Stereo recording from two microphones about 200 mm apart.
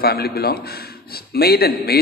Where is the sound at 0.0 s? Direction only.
50° left (ahead or behind).